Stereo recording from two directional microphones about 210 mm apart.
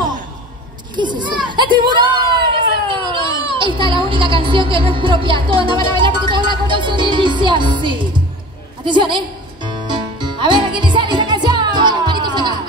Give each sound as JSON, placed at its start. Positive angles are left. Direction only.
{"t": 0.9, "sound": "a man's voice", "side_deg": -20}
{"t": 10.1, "sound": "music", "side_deg": -20}